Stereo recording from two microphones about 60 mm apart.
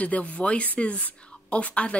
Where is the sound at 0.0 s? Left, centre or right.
Left.